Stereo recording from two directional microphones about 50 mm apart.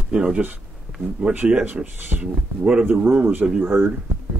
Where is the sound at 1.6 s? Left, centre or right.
Right.